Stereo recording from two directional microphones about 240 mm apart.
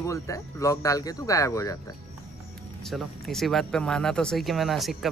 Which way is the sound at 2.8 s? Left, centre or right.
Centre.